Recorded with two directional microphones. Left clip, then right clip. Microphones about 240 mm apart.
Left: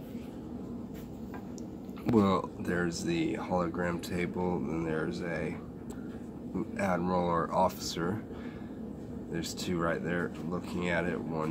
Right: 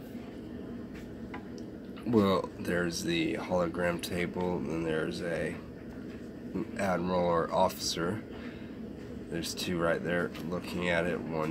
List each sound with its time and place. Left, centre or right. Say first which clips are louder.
2.1 s speech: right 1 dB; centre
6.8 s speech: right 1 dB; centre
9.3 s speech: right 1 dB; centre